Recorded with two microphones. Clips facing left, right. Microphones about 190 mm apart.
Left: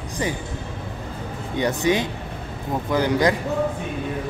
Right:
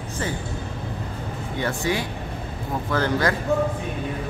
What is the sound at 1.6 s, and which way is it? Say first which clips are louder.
Speech: left 5 dB; 20° left (ahead or behind).